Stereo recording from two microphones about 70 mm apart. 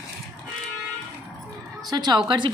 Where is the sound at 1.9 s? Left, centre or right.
Right.